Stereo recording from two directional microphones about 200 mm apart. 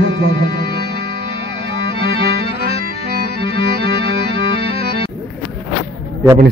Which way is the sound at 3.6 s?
60° right (ahead or behind).